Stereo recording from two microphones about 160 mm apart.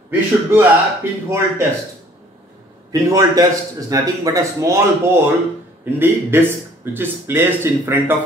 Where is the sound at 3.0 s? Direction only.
20° right (ahead or behind).